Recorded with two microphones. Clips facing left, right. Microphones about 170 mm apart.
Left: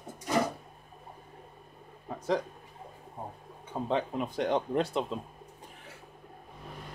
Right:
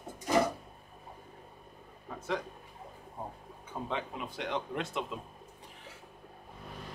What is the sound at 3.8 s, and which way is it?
Speech, 35° left (ahead or behind).